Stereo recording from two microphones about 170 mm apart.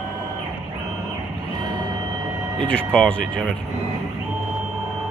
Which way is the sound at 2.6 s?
5° left (ahead or behind).